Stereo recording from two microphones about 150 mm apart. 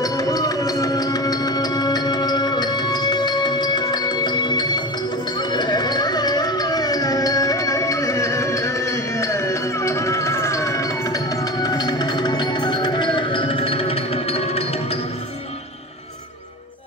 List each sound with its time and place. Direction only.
0.0 s music: 25° left (ahead or behind); by 14.6 s 40° left (ahead or behind)